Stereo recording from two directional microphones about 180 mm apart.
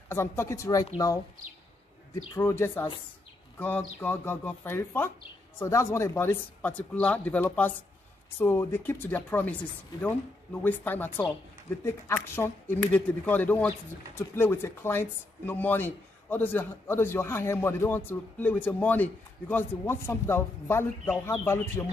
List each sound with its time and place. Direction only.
0.1 s speech: 15° left (ahead or behind)